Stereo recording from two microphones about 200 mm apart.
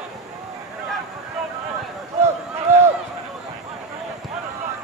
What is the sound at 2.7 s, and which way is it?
Run, 15° right (ahead or behind).